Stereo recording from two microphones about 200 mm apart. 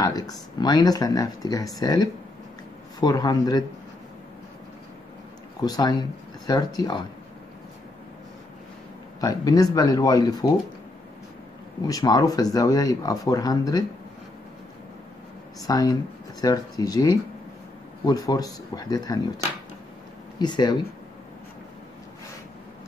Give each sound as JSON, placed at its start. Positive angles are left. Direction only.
{"t": 0.6, "sound": "speech", "side_deg": 20}
{"t": 5.6, "sound": "speech", "side_deg": 20}
{"t": 9.2, "sound": "speech", "side_deg": 20}
{"t": 11.8, "sound": "speech", "side_deg": 20}
{"t": 15.6, "sound": "speech", "side_deg": 20}
{"t": 20.3, "sound": "speech", "side_deg": 20}